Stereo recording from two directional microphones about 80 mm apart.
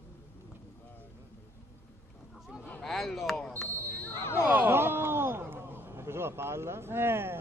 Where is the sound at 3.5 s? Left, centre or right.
Left.